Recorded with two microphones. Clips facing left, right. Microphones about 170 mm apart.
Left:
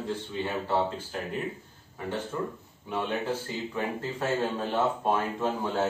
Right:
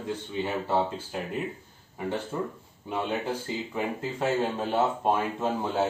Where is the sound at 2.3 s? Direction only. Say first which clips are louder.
Left 1 dB; 25° right (ahead or behind).